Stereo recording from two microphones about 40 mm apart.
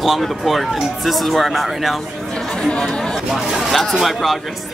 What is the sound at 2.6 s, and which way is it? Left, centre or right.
Speech, centre.